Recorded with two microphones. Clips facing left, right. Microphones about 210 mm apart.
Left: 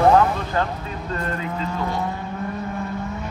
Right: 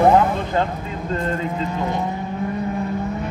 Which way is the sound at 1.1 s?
15° right (ahead or behind).